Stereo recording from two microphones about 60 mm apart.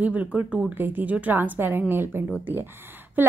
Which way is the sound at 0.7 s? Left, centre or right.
Right.